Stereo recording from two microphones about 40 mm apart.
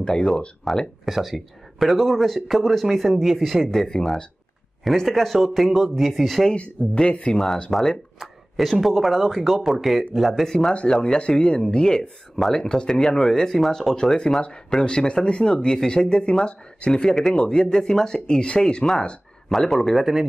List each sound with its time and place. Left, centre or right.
0.0 s speech: centre
1.0 s speech: centre
3.6 s speech: centre
6.5 s speech: left
7.7 s speech: centre
8.2 s a sound: centre
8.8 s speech: centre
10.4 s speech: centre
10.7 s speech: left
19.5 s speech: centre
20.0 s speech: centre